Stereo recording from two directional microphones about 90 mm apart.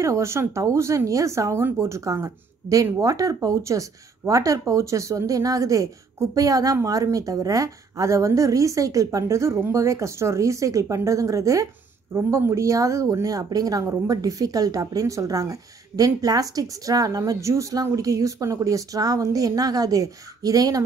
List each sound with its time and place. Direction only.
0.0 s a woman's voice: 30° right (ahead or behind)